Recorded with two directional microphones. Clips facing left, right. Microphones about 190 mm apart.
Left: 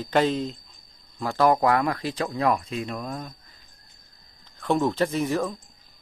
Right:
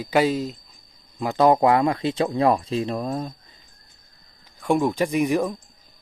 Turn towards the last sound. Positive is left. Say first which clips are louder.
# right 3 dB
turn(degrees=-15)  # may be behind; listen again after turning